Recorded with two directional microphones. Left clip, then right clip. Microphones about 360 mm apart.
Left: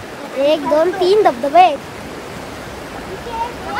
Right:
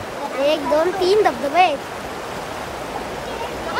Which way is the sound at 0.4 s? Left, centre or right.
Centre.